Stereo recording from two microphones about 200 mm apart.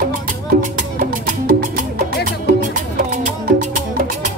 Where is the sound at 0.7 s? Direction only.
45° right (ahead or behind).